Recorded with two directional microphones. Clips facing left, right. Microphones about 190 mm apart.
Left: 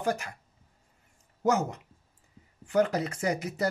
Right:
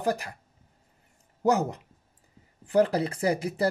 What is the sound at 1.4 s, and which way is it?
Speech, 35° right (ahead or behind).